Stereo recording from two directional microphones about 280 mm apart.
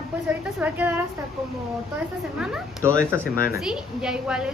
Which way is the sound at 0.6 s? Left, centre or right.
Centre.